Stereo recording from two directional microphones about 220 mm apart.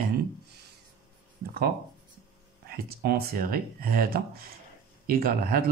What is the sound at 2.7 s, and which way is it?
Speech, 45° right (ahead or behind).